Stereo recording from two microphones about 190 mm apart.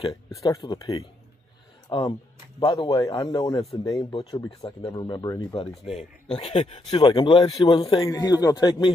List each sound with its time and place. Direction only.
0.0 s speech: 20° left (ahead or behind)